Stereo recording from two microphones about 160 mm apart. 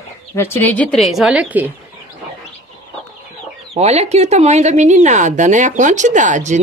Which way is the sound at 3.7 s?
40° right (ahead or behind).